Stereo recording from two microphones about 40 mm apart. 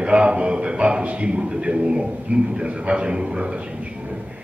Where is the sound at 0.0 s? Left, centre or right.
Right.